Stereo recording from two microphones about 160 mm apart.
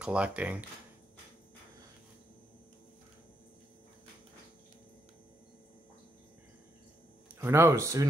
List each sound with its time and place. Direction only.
0.0 s speech: 5° right (ahead or behind)
7.3 s speech: 15° right (ahead or behind)